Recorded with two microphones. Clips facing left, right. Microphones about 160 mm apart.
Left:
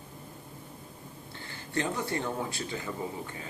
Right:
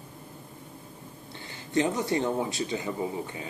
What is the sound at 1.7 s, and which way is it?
Speech, 20° right (ahead or behind).